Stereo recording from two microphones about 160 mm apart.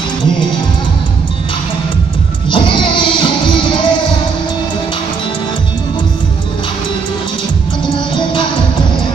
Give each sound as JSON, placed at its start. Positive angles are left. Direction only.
{"t": 2.5, "sound": "music", "side_deg": 30}
{"t": 7.8, "sound": "music", "side_deg": 30}